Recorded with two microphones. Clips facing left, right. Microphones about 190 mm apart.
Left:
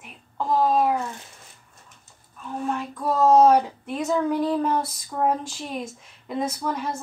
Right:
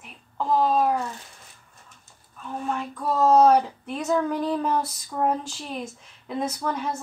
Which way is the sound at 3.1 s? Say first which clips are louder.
Left 1 dB; centre (ahead or behind).